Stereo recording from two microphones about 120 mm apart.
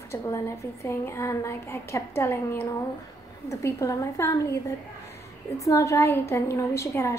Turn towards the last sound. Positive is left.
turn(degrees=25)  # may be behind; listen again after turning